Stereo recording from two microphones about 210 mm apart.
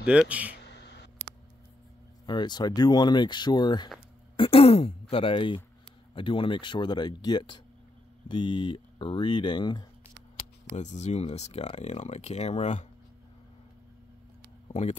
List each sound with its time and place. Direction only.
0.0 s speech: 5° right (ahead or behind)
0.7 s a sound: 55° left (ahead or behind)
2.2 s speech: 20° left (ahead or behind)
10.8 s speech: 35° left (ahead or behind)
14.7 s speech: 35° left (ahead or behind)